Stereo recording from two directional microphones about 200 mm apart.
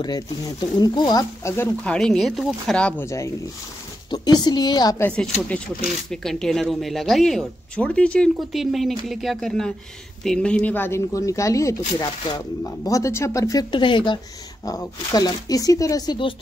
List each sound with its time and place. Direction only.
0.0 s speech: 20° left (ahead or behind)